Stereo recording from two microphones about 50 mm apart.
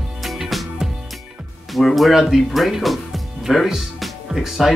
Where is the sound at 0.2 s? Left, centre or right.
Centre.